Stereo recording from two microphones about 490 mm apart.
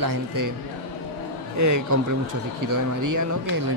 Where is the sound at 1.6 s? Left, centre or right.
Right.